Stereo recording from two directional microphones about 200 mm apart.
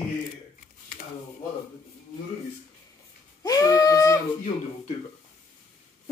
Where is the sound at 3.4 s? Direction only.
20° left (ahead or behind).